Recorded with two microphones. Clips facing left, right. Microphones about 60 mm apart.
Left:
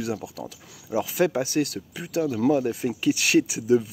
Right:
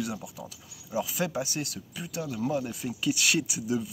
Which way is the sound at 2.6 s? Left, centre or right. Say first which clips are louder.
Left 7 dB; left.